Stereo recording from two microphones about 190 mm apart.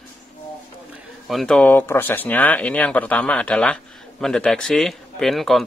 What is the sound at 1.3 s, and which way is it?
Speech, centre (ahead or behind).